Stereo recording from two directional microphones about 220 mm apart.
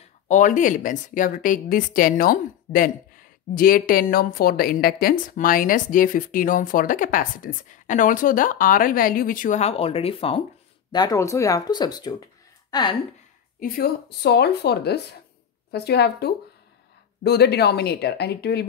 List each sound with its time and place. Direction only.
0.3 s a woman's voice: 35° left (ahead or behind); by 12.9 s 20° left (ahead or behind)
13.6 s speech: 45° left (ahead or behind)